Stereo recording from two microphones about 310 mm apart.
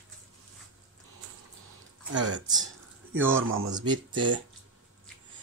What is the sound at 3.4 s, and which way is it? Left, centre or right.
Speech, right.